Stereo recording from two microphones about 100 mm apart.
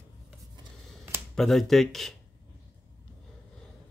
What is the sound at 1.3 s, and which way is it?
Speech, 5° left (ahead or behind).